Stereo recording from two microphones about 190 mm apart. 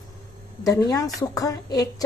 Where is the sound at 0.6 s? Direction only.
15° left (ahead or behind).